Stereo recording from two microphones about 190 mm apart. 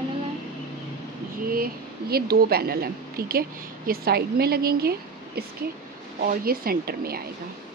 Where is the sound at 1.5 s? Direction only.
50° right (ahead or behind).